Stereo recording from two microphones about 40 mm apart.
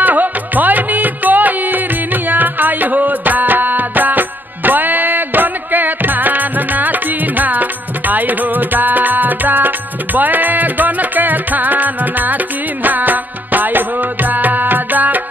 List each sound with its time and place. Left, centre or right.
0.0 s music: right